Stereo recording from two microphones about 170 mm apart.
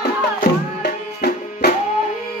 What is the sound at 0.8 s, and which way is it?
Music, 70° left (ahead or behind).